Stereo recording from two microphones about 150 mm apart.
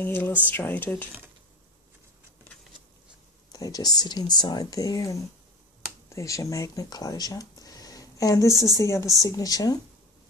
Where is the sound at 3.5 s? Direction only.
25° left (ahead or behind).